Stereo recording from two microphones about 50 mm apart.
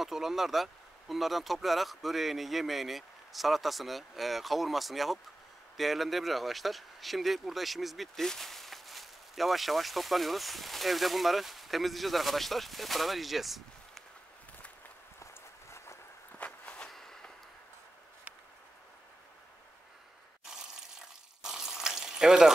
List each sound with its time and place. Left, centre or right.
0.0 s speech: centre
16.3 s walk: left
16.9 s a sound: centre
20.4 s water: centre